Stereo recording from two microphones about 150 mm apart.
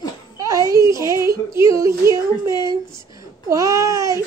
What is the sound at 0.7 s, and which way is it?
Child singing, 20° right (ahead or behind).